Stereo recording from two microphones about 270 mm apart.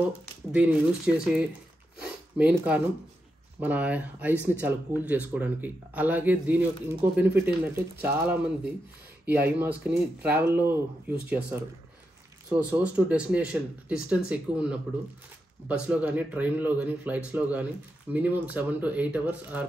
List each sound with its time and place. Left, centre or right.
0.0 s speech: centre
2.0 s sniff: centre
3.6 s speech: centre